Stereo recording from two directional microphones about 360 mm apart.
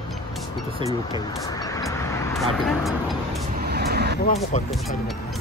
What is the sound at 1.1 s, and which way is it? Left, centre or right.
Vehicle, centre.